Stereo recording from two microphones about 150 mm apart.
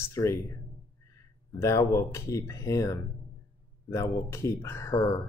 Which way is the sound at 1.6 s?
20° left (ahead or behind).